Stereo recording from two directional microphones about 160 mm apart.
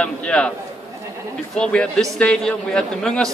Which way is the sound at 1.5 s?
5° left (ahead or behind).